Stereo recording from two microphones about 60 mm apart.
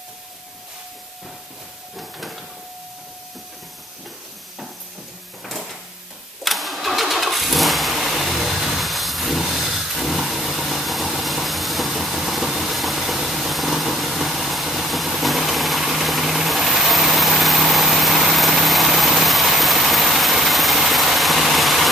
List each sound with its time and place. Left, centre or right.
2.0 s steam: centre
5.4 s door: centre
6.4 s vehicle: centre